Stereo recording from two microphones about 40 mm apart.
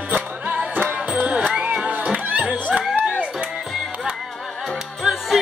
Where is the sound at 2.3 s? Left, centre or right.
Right.